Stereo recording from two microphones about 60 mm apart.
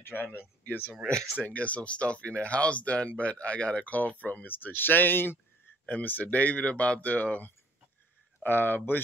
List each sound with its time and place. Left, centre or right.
0.0 s speech: left
1.4 s speech: left
5.9 s speech: left